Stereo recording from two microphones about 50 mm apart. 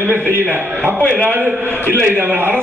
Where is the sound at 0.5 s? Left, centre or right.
Right.